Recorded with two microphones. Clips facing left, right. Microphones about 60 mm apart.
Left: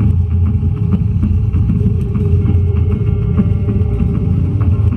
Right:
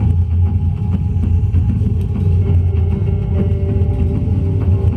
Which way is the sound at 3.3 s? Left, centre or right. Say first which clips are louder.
Left 4 dB; left.